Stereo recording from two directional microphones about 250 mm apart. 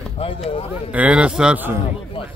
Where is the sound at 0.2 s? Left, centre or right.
Left.